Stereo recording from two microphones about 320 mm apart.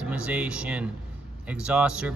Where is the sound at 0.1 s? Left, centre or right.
Centre.